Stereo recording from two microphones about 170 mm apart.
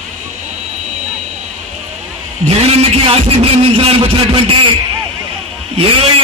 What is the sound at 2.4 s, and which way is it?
A man's voice, 35° right (ahead or behind).